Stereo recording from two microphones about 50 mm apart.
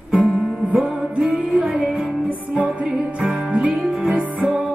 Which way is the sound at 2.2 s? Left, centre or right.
Right.